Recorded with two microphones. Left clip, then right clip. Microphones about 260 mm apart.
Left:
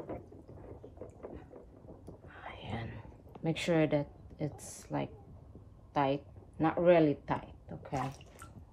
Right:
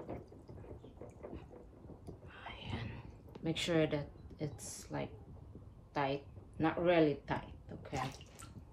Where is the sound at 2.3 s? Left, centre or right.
Centre.